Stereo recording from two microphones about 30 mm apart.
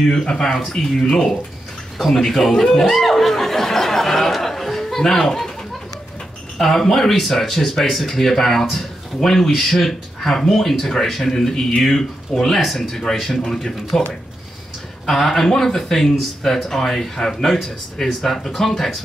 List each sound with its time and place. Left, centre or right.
0.1 s speech: left
0.4 s speech: centre
6.6 s speech: centre
15.0 s speech: centre